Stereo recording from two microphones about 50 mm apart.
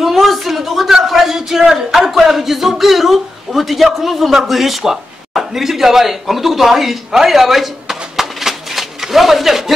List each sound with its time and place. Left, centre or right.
0.0 s a man's voice: centre